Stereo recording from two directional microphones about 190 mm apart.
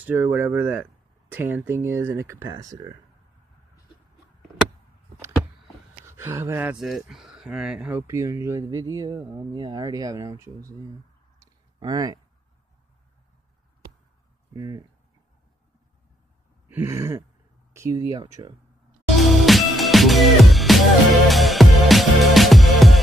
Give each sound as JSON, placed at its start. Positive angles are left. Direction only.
{"t": 0.0, "sound": "speech", "side_deg": -10}
{"t": 6.0, "sound": "speech", "side_deg": -15}
{"t": 11.3, "sound": "a sound", "side_deg": -20}
{"t": 14.5, "sound": "speech", "side_deg": -20}
{"t": 16.6, "sound": "a sound", "side_deg": -10}
{"t": 17.7, "sound": "speech", "side_deg": -15}
{"t": 19.1, "sound": "music", "side_deg": 0}